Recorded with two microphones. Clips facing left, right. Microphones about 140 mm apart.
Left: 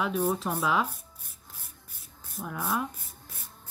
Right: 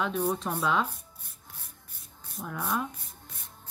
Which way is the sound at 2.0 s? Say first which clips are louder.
Left 1 dB; centre (ahead or behind).